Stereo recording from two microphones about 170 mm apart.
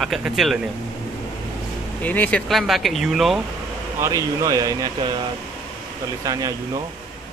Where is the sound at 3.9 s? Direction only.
20° right (ahead or behind).